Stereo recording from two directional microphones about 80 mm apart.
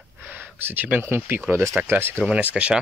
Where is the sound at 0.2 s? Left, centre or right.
Right.